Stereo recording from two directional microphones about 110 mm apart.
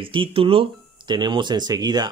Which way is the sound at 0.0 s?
55° right (ahead or behind).